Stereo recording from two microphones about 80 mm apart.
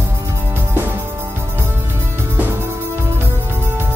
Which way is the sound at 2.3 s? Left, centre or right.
Right.